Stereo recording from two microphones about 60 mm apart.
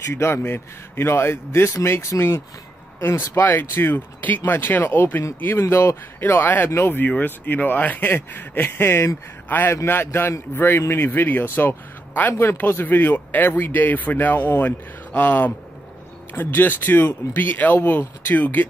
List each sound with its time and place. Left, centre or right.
0.0 s speech: left
5.6 s speech: left
7.0 s speech: left
15.1 s speech: left